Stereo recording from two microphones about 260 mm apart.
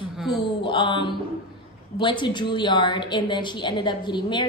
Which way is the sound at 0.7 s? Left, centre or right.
Centre.